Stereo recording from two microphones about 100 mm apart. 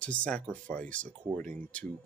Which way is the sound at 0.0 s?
10° left (ahead or behind).